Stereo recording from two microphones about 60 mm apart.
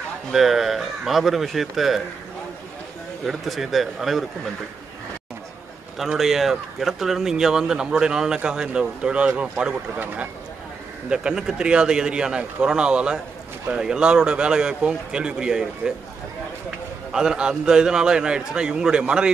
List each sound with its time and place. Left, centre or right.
0.3 s speech: centre
3.3 s speech: centre
5.9 s speech: centre
11.1 s speech: centre
17.1 s speech: centre